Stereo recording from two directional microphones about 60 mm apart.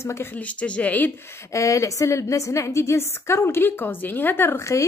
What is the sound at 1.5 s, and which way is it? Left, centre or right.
A woman's voice, left.